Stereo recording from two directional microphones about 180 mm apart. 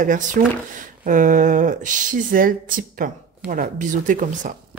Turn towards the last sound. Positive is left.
turn(degrees=-45)  # may be behind; listen again after turning